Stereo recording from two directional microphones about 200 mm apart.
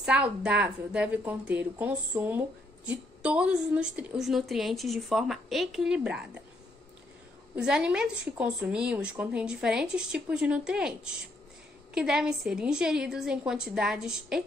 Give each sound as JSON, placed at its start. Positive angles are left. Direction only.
{"t": 0.0, "sound": "a woman's voice", "side_deg": -5}
{"t": 7.5, "sound": "a woman's voice", "side_deg": -5}